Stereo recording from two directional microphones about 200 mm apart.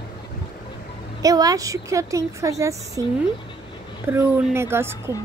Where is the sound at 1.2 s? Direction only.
20° right (ahead or behind).